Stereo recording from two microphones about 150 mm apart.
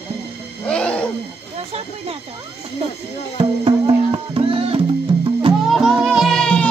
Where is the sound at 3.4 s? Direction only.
35° right (ahead or behind).